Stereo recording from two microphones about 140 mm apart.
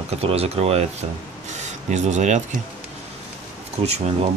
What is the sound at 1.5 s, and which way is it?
Speech, 55° right (ahead or behind).